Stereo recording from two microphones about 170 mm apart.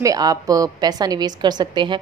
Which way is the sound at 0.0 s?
20° right (ahead or behind).